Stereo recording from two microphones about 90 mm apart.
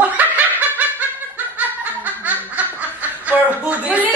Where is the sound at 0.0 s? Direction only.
20° right (ahead or behind).